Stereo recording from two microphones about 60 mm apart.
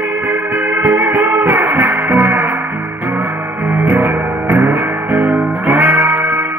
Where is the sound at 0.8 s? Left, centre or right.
Right.